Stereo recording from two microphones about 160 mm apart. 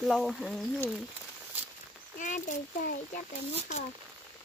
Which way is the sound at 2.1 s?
50° left (ahead or behind).